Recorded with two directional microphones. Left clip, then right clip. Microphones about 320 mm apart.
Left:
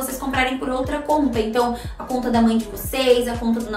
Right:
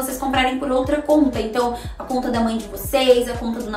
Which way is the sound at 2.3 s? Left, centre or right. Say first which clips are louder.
Left 2 dB; centre.